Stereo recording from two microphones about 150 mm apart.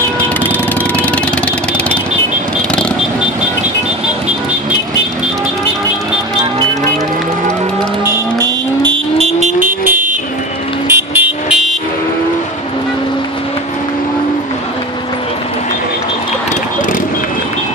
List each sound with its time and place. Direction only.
8.8 s vehicle: 35° right (ahead or behind)
9.4 s vehicle: 60° right (ahead or behind)
10.9 s vehicle: 15° right (ahead or behind)